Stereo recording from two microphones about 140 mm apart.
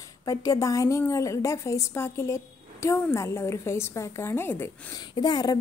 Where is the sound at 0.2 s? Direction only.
25° left (ahead or behind).